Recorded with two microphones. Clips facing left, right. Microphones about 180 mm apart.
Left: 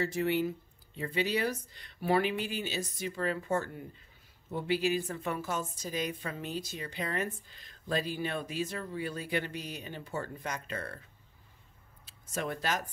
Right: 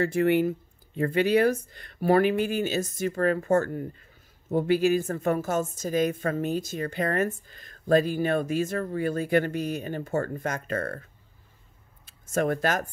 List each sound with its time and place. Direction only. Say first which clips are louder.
0.0 s a woman's voice: right 8 dB; 55° right (ahead or behind)
12.3 s a woman's voice: right 9 dB; 50° right (ahead or behind)